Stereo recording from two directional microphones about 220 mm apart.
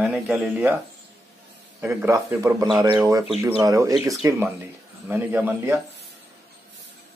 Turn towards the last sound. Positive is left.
turn(degrees=-10)  # may be behind; listen again after turning